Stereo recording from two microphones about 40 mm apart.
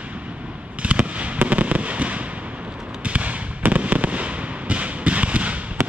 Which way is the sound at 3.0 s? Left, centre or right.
Right.